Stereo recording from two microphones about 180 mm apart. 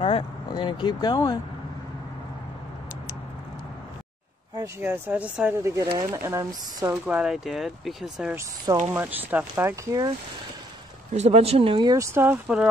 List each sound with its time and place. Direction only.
0.0 s speech: 30° left (ahead or behind)
4.6 s speech: 15° right (ahead or behind)
11.1 s speech: 35° right (ahead or behind); by 12.6 s 10° right (ahead or behind)